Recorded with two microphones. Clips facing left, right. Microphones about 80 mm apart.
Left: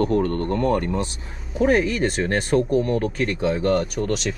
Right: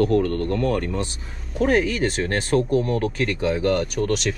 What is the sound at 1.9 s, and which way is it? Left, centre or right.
Speech, centre.